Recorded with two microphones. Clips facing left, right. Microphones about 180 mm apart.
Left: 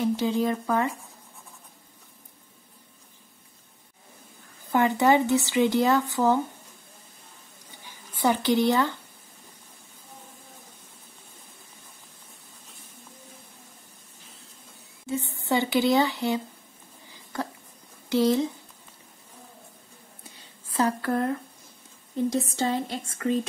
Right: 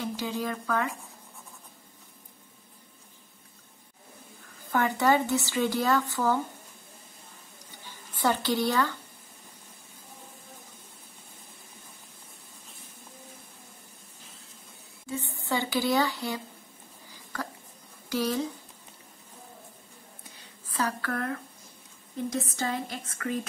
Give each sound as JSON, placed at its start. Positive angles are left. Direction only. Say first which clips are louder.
{"t": 0.0, "sound": "speech", "louder": "left 7 dB", "side_deg": 25}
{"t": 4.7, "sound": "speech", "louder": "left 4 dB", "side_deg": 20}
{"t": 7.8, "sound": "a woman's voice", "louder": "left 3 dB", "side_deg": 15}
{"t": 15.0, "sound": "speech", "louder": "left 5 dB", "side_deg": 20}
{"t": 18.1, "sound": "speech", "louder": "left 7 dB", "side_deg": 25}
{"t": 20.3, "sound": "a sound", "louder": "left 6 dB", "side_deg": 25}
{"t": 22.1, "sound": "speech", "louder": "left 6 dB", "side_deg": 30}